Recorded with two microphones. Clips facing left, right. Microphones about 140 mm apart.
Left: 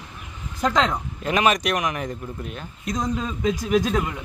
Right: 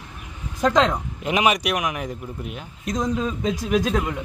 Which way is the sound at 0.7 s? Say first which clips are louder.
Right 2 dB; 15° right (ahead or behind).